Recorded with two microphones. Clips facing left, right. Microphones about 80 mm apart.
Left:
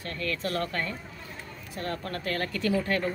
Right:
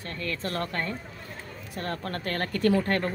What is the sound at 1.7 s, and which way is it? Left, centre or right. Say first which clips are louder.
Speech: right 1 dB; right.